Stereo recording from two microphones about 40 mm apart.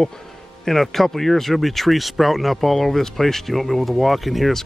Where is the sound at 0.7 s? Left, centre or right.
Centre.